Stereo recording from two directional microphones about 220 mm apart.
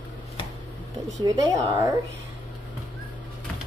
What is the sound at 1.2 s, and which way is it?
Speech, 15° right (ahead or behind).